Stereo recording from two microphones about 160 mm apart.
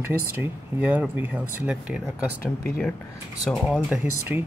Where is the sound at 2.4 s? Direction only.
70° left (ahead or behind).